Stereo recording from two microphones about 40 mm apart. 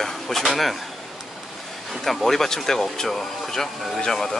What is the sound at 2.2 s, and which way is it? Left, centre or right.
Speech, centre.